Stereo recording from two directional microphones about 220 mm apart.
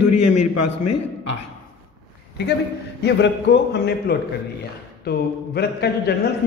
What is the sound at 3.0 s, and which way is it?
A man's voice, 50° left (ahead or behind).